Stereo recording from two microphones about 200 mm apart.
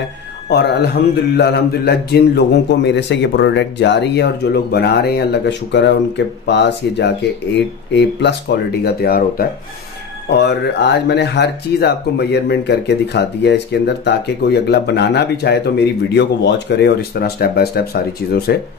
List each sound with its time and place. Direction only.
0.5 s a man's voice: 55° left (ahead or behind)